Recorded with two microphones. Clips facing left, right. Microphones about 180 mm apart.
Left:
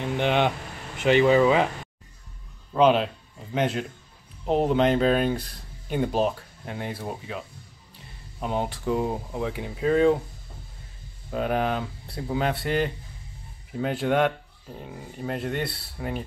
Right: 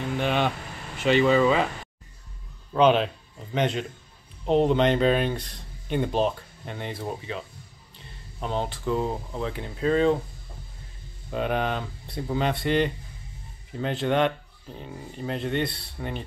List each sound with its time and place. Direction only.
0.0 s a sound: 20° left (ahead or behind)
0.9 s speech: 15° left (ahead or behind)
2.7 s speech: 5° left (ahead or behind)
8.4 s speech: 10° left (ahead or behind)
11.2 s speech: 5° left (ahead or behind)